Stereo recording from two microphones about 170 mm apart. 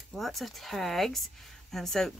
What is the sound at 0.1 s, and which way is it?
Speech, centre (ahead or behind).